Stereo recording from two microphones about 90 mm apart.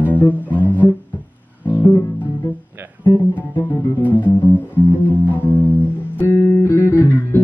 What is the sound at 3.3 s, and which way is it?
Music, 20° left (ahead or behind).